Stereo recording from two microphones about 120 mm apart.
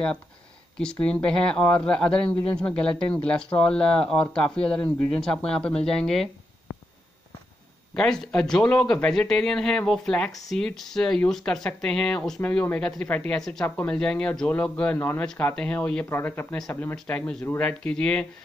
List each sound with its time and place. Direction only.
0.7 s speech: 5° left (ahead or behind)
7.9 s speech: 5° left (ahead or behind)
16.9 s speech: 5° left (ahead or behind)